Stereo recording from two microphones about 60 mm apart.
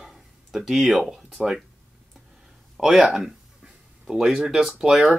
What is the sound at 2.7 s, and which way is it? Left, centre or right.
Speech, centre.